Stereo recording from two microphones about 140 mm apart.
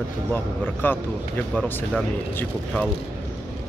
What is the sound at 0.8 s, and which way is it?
Speech, 15° left (ahead or behind).